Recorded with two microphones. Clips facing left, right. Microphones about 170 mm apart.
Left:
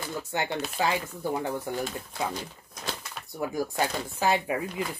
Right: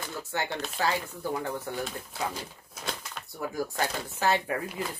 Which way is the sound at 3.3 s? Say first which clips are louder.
Left 3 dB; 15° left (ahead or behind).